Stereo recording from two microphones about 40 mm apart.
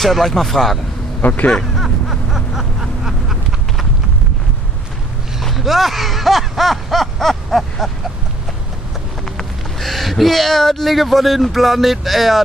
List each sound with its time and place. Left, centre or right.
0.0 s speech: centre
1.2 s speech: left
1.8 s a sound: centre
5.4 s speech: centre
9.2 s speech: centre